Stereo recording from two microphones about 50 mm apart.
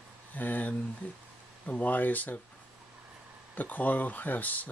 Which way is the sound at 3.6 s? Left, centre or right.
Left.